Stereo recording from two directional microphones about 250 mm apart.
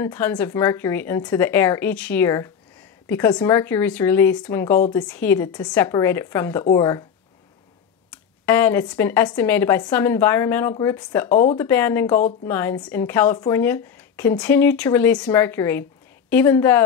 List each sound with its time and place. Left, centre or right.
0.0 s speech: centre
8.1 s speech: centre